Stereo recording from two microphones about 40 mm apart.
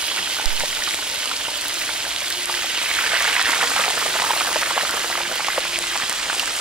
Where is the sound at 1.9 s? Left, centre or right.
Right.